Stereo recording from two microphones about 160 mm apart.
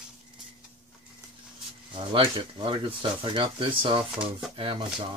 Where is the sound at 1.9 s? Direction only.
30° right (ahead or behind).